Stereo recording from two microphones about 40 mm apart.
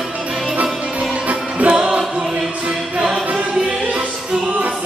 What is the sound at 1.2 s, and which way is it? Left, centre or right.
Music, right.